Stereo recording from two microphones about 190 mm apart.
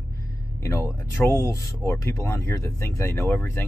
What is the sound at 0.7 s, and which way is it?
Speech, 15° left (ahead or behind).